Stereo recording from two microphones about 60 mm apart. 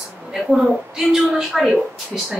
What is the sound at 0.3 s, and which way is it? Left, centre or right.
Speech, centre.